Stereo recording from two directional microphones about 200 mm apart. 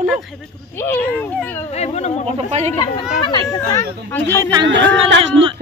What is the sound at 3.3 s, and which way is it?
Speech, 20° left (ahead or behind).